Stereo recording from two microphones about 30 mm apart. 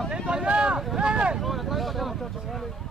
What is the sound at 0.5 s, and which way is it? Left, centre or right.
Vehicle, right.